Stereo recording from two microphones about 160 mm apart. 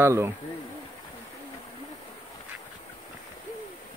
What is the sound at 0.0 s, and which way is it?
Speech, 15° right (ahead or behind).